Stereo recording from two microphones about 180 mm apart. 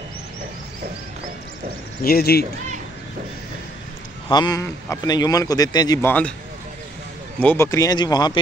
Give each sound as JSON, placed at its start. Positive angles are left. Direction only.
{"t": 2.0, "sound": "speech", "side_deg": 60}
{"t": 4.3, "sound": "speech", "side_deg": 20}
{"t": 7.3, "sound": "speech", "side_deg": 10}